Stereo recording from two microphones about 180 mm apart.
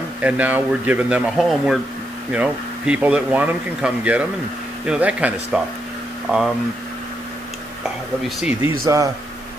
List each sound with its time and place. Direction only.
0.2 s speech: 10° right (ahead or behind)
8.8 s speech: 15° right (ahead or behind)